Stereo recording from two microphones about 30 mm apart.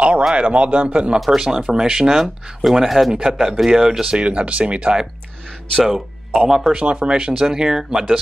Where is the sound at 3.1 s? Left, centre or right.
Centre.